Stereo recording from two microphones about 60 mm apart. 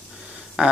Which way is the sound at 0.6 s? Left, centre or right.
Centre.